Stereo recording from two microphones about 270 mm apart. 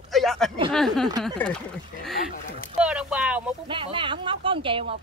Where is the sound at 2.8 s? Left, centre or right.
Centre.